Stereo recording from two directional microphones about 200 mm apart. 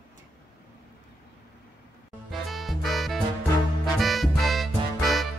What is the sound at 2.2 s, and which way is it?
Music, centre (ahead or behind).